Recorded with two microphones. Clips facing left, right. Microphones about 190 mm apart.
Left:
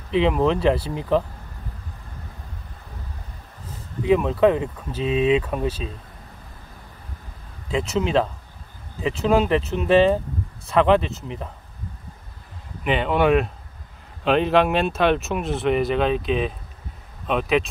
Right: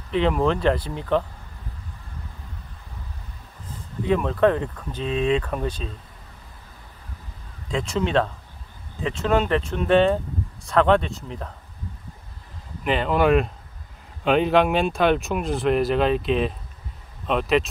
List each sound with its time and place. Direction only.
0.2 s speech: 5° left (ahead or behind)
4.1 s speech: 5° left (ahead or behind)
7.6 s speech: 5° left (ahead or behind)
12.8 s speech: centre (ahead or behind)